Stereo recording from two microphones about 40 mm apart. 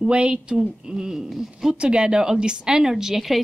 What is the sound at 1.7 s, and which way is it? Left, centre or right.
A woman's voice, right.